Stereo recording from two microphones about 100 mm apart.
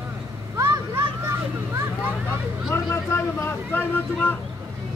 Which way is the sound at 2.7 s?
30° left (ahead or behind).